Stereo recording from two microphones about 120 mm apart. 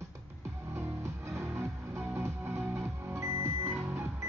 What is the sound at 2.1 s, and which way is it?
Music, 20° right (ahead or behind).